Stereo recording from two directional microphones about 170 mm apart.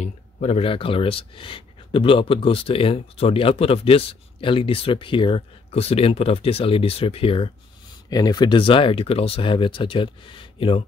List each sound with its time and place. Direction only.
0.0 s speech: 40° left (ahead or behind)